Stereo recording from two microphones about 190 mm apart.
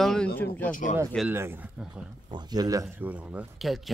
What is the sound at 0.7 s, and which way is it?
Speech, 40° left (ahead or behind).